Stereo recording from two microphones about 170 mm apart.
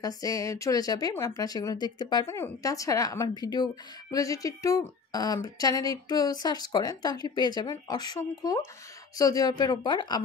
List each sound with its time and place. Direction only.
0.0 s speech: 20° left (ahead or behind)